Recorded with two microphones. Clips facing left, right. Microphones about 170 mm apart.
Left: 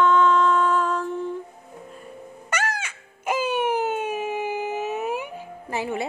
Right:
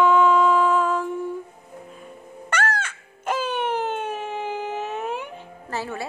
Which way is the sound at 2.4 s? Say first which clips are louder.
Right 3 dB; 10° left (ahead or behind).